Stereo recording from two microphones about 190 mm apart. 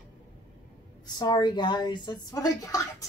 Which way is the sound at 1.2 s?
25° left (ahead or behind).